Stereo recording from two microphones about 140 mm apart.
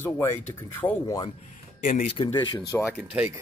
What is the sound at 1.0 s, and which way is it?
Speech, 25° left (ahead or behind).